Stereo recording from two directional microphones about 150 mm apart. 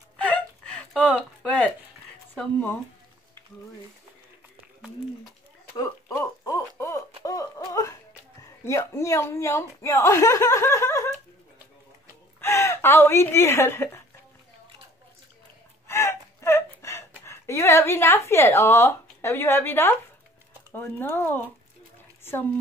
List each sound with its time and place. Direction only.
0.2 s whimper: 5° left (ahead or behind)
2.3 s speech: 15° left (ahead or behind)
5.7 s a sound: 20° left (ahead or behind)
12.4 s speech: 15° left (ahead or behind)
15.9 s a sound: 15° left (ahead or behind)
17.2 s a woman's voice: 20° left (ahead or behind)